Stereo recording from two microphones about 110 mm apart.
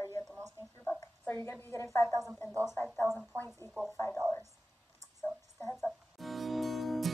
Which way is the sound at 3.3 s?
20° left (ahead or behind).